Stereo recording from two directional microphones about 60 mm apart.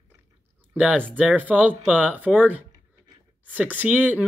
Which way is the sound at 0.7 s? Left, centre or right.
Centre.